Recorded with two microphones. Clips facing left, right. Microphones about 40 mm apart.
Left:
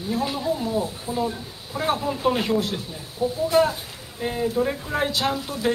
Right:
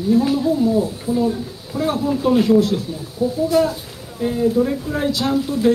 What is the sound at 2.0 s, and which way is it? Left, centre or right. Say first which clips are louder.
A woman's voice: right 6 dB; centre.